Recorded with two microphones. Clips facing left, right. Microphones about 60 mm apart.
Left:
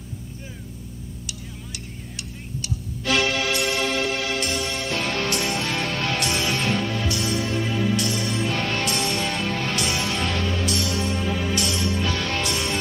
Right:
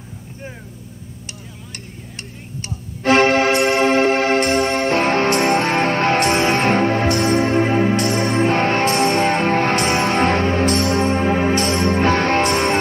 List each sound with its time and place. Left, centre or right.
2.1 s music: right